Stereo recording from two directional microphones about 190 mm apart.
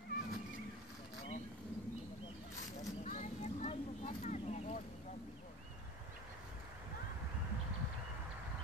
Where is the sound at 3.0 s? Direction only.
40° left (ahead or behind).